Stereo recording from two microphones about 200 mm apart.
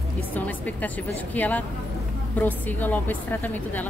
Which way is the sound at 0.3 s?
10° left (ahead or behind).